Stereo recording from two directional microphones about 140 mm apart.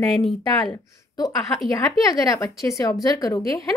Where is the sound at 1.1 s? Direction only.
25° left (ahead or behind).